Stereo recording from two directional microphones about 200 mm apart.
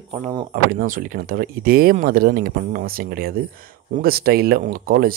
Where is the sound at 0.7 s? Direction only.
45° right (ahead or behind).